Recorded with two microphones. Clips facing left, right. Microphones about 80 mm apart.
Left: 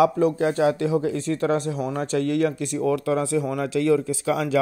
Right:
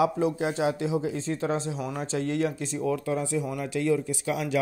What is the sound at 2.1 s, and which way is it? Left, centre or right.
Speech, left.